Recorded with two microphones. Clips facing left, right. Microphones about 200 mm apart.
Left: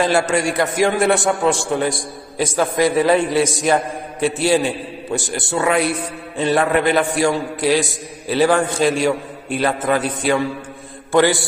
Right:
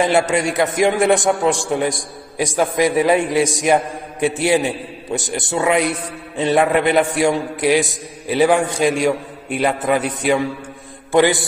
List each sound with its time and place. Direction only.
0.0 s a man's voice: 20° right (ahead or behind)
11.1 s mantra: 20° right (ahead or behind)